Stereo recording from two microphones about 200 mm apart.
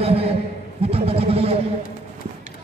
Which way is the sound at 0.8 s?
30° right (ahead or behind).